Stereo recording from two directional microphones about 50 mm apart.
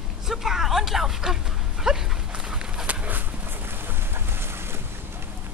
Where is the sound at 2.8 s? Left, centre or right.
Right.